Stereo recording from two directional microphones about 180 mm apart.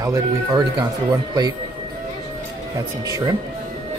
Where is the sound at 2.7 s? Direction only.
20° right (ahead or behind).